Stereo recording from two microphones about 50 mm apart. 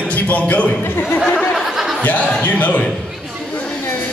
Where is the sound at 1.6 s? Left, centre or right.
Centre.